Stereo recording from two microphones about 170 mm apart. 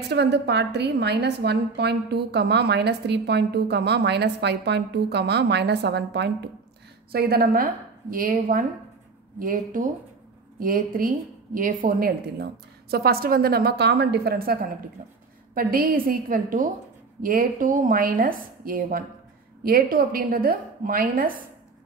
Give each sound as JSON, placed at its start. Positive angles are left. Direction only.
{"t": 0.1, "sound": "a woman's voice", "side_deg": -80}
{"t": 7.1, "sound": "a woman's voice", "side_deg": -65}
{"t": 12.9, "sound": "a woman's voice", "side_deg": -65}
{"t": 15.0, "sound": "a woman's voice", "side_deg": -45}
{"t": 15.5, "sound": "a woman's voice", "side_deg": -60}